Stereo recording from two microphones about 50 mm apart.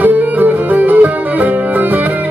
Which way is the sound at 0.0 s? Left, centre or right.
Right.